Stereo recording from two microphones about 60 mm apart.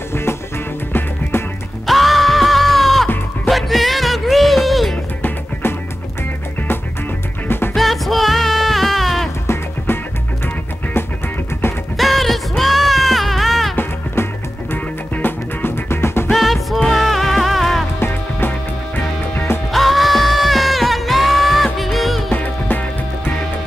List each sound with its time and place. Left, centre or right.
0.1 s music: left
1.9 s music: centre
5.2 s music: left
7.7 s music: centre
10.4 s music: left
12.0 s music: centre
15.1 s music: left
16.3 s music: centre
17.9 s music: left
19.7 s music: centre
22.3 s music: left